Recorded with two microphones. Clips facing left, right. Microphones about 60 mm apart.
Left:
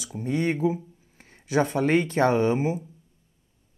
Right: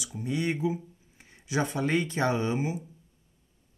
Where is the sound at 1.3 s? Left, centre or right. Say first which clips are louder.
Left 6 dB; left.